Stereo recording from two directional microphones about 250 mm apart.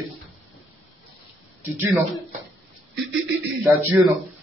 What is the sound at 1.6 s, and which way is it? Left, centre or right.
Speech, centre.